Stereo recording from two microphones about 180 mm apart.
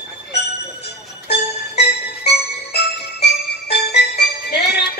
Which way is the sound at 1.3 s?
65° left (ahead or behind).